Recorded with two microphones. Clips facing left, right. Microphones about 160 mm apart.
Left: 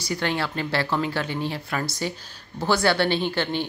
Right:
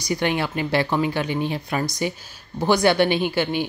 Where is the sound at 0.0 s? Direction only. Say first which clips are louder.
Right 3 dB; 15° right (ahead or behind).